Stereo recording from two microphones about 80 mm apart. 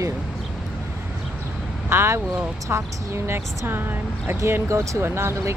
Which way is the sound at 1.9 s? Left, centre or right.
Right.